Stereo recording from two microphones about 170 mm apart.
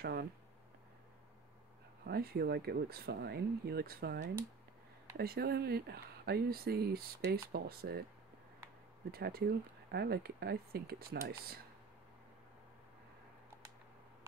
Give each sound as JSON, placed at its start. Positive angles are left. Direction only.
{"t": 0.0, "sound": "a sound", "side_deg": -70}
{"t": 2.0, "sound": "speech", "side_deg": -65}
{"t": 9.1, "sound": "speech", "side_deg": -65}